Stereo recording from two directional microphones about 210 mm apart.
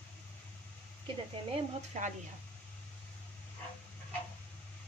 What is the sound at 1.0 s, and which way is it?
Speech, 30° right (ahead or behind).